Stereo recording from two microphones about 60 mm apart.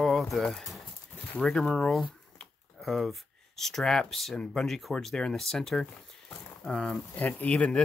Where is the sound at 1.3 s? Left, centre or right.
Centre.